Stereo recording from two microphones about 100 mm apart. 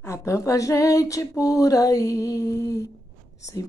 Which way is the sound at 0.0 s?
25° left (ahead or behind).